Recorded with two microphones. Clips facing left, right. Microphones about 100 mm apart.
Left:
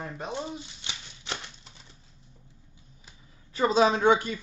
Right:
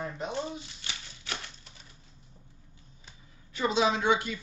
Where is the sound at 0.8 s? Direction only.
20° left (ahead or behind).